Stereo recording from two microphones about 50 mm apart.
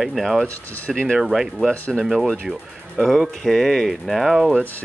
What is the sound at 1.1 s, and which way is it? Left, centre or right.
Speech, centre.